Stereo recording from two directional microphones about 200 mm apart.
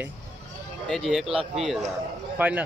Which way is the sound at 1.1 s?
Centre (ahead or behind).